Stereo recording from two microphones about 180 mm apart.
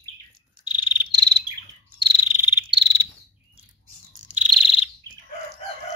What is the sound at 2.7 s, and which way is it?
Cricket, 25° right (ahead or behind).